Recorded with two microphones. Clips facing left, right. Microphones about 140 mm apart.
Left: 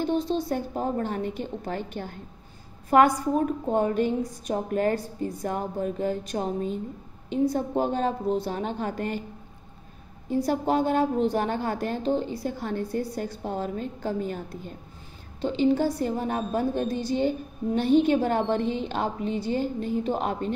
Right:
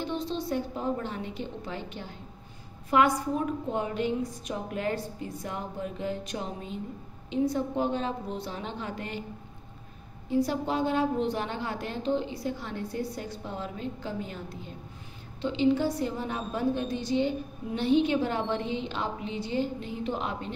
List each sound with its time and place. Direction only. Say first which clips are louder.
0.0 s a woman's voice: left 6 dB; 45° left (ahead or behind)
10.4 s a woman's voice: left 7 dB; 45° left (ahead or behind)